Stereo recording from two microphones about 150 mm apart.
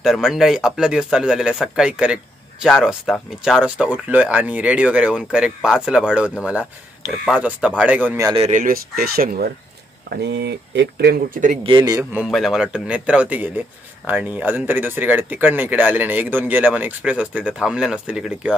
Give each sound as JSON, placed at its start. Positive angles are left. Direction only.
{"t": 0.0, "sound": "speech", "side_deg": -5}
{"t": 8.5, "sound": "speech", "side_deg": -60}
{"t": 10.1, "sound": "a sound", "side_deg": -90}
{"t": 11.0, "sound": "speech", "side_deg": -80}
{"t": 11.6, "sound": "speech", "side_deg": -30}
{"t": 12.0, "sound": "speech", "side_deg": -10}
{"t": 12.3, "sound": "speech", "side_deg": 0}